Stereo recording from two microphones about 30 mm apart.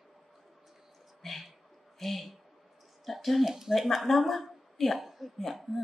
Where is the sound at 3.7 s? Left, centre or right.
Centre.